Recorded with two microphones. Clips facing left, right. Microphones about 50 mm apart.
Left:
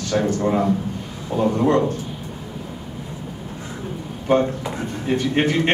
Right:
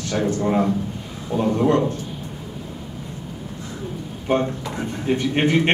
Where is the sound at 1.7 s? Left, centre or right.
Left.